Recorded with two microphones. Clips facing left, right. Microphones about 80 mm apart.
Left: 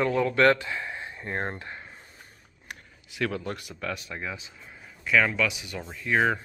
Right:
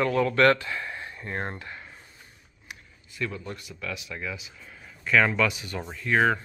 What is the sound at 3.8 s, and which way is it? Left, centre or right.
Speech, left.